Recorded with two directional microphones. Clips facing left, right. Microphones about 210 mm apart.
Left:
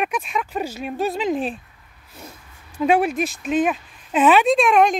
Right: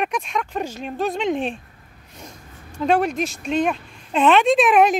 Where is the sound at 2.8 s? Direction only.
5° left (ahead or behind).